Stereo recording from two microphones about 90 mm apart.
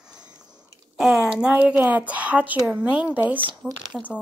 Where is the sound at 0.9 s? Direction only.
5° right (ahead or behind).